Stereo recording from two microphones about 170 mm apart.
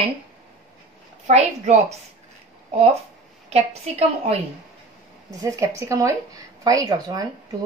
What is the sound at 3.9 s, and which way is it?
Speech, 40° right (ahead or behind).